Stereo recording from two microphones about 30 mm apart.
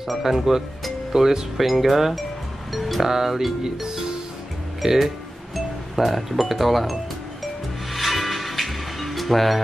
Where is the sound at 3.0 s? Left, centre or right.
Centre.